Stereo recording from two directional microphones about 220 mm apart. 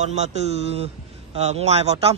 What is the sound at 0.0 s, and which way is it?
Speech, 30° right (ahead or behind).